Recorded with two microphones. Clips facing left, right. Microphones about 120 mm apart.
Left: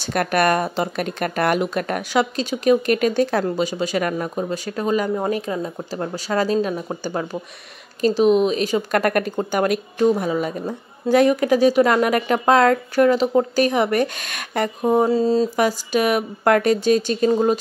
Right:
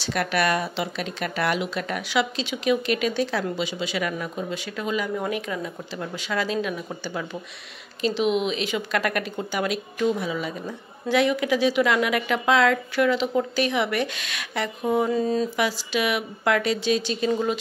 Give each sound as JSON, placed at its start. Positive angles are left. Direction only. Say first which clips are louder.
{"t": 0.0, "sound": "a woman's voice", "louder": "left 5 dB", "side_deg": 50}
{"t": 15.6, "sound": "a woman's voice", "louder": "left 6 dB", "side_deg": 45}